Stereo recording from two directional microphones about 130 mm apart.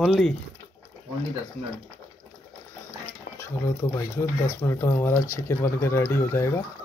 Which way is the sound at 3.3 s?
20° left (ahead or behind).